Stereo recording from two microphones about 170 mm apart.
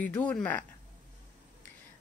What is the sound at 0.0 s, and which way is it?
Speech, 5° left (ahead or behind).